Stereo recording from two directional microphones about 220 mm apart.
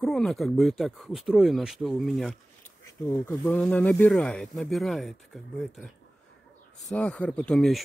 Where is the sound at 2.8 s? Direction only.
10° left (ahead or behind).